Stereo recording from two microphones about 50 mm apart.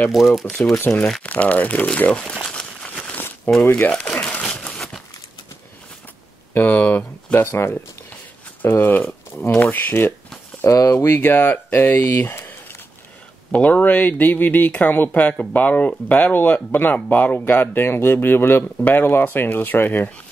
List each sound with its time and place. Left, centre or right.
0.1 s speech: centre
0.9 s speech: left
2.3 s crumpling: centre
3.5 s speech: left
4.0 s crumpling: left
4.3 s a sound: centre
6.5 s speech: left
7.5 s speech: left
10.7 s speech: left
11.1 s speech: left
12.3 s a sound: left
13.5 s speech: left
17.5 s speech: left